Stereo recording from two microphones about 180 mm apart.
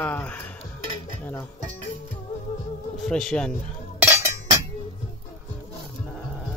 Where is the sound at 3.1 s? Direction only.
5° left (ahead or behind).